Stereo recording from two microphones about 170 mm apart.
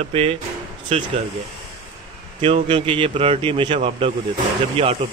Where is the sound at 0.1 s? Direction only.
35° right (ahead or behind).